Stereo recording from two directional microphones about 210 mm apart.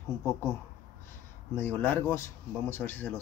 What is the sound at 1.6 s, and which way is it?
Speech, 10° left (ahead or behind).